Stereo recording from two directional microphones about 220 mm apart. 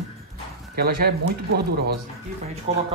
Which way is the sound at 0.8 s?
45° right (ahead or behind).